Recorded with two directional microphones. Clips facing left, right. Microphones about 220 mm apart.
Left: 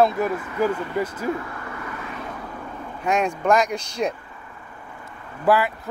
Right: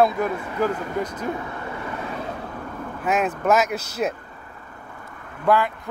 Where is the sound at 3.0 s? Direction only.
5° right (ahead or behind).